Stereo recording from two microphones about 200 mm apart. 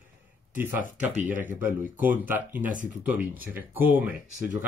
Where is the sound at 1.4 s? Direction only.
10° right (ahead or behind).